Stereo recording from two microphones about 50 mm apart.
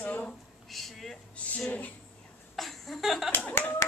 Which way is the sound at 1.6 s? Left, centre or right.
Left.